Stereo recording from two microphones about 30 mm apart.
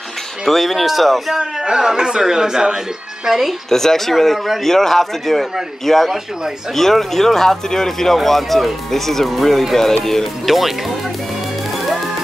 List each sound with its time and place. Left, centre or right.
0.5 s speech: centre
1.4 s a man's voice: right
3.7 s a man's voice: centre
8.2 s speech: centre
10.4 s speech: centre